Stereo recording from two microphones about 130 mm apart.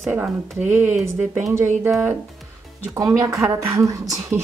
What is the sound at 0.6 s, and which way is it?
Speech, 15° right (ahead or behind).